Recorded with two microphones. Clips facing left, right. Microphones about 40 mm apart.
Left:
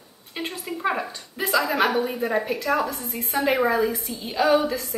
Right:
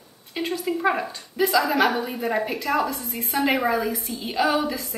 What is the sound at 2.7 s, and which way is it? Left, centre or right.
Speech, centre.